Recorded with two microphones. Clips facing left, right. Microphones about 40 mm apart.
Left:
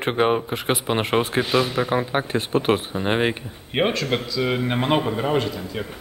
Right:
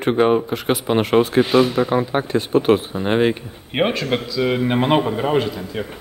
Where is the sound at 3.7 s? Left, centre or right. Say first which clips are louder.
Right 2 dB; centre.